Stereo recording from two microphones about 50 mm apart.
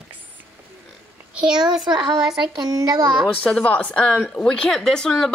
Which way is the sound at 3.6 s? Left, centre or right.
Left.